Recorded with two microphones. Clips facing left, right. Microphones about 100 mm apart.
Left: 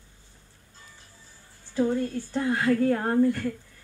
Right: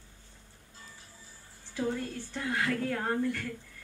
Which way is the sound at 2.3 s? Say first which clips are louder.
Left 8 dB; 40° left (ahead or behind).